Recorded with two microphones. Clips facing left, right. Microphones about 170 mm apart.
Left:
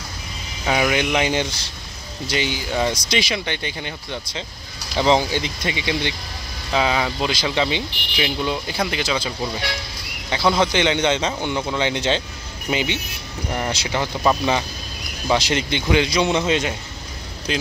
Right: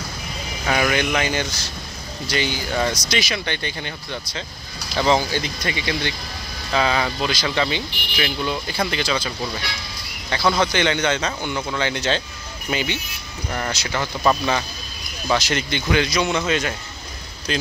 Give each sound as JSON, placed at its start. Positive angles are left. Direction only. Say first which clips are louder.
{"t": 0.7, "sound": "speech", "louder": "left 1 dB", "side_deg": 15}
{"t": 10.3, "sound": "speech", "louder": "left 1 dB", "side_deg": 20}